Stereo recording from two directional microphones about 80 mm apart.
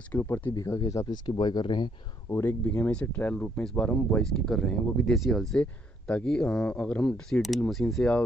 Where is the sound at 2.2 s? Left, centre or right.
Left.